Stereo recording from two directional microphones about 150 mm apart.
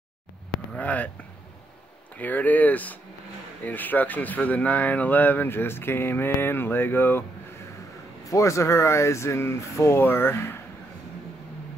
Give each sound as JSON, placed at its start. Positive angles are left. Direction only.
{"t": 0.7, "sound": "speech", "side_deg": 10}
{"t": 2.1, "sound": "speech", "side_deg": 10}
{"t": 8.3, "sound": "speech", "side_deg": 20}